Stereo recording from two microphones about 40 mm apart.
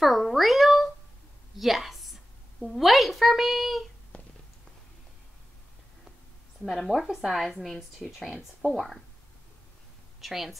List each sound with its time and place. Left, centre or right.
0.0 s a child's voice: centre
4.1 s a sound: left
6.7 s speech: centre
10.2 s speech: centre